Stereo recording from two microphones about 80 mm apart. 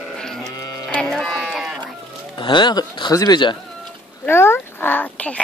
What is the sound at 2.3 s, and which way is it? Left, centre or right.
Speech, left.